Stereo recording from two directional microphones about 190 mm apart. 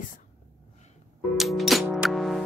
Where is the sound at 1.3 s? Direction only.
Centre (ahead or behind).